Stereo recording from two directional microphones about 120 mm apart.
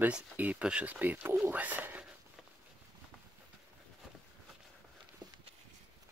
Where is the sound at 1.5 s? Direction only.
15° right (ahead or behind).